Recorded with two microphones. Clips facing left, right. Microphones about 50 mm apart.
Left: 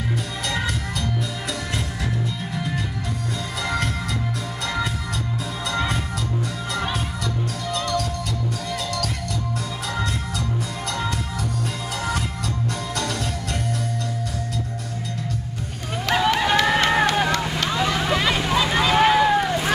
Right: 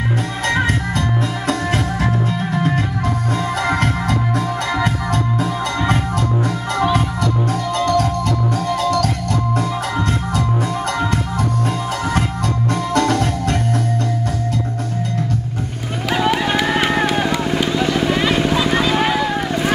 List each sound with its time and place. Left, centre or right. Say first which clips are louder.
0.6 s music: right 8 dB; right
2.5 s music: right 8 dB; right
7.7 s music: right 8 dB; right
12.9 s music: right 10 dB; right
16.1 s run: right 2 dB; centre
16.9 s vehicle: right 2 dB; centre